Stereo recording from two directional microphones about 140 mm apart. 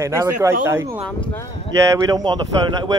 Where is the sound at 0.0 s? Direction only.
20° right (ahead or behind).